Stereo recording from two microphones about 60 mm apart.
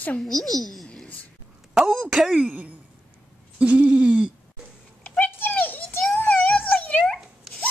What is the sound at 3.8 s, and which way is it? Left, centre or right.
Hoot, centre.